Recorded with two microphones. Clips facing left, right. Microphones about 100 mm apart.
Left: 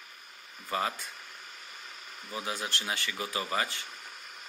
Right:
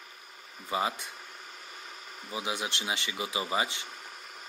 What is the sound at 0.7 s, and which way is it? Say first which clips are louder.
Speech: right 1 dB; 15° right (ahead or behind).